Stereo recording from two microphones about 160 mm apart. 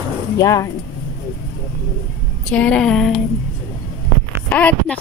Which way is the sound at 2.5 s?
5° left (ahead or behind).